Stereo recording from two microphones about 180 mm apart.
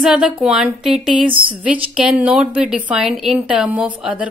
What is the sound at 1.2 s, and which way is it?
Speech, 30° right (ahead or behind).